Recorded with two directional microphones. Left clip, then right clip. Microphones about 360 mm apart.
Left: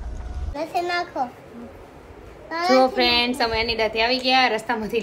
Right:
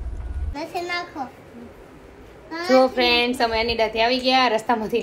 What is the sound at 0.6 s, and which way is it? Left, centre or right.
Speech, left.